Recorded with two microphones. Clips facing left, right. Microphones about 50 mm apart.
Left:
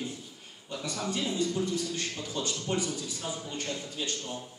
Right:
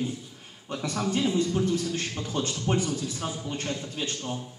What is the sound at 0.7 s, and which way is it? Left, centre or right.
A man's voice, right.